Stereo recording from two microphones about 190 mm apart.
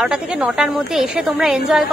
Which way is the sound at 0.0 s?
5° right (ahead or behind).